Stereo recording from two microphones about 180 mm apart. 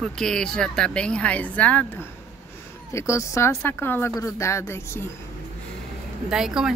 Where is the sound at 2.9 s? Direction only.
15° left (ahead or behind).